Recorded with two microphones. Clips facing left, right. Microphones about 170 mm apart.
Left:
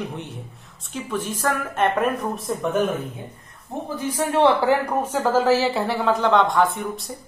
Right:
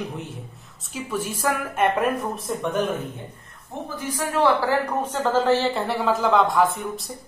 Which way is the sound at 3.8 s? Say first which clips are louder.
Left 4 dB; 25° left (ahead or behind).